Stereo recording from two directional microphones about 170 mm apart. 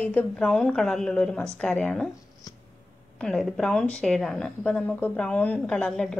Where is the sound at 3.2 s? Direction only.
5° left (ahead or behind).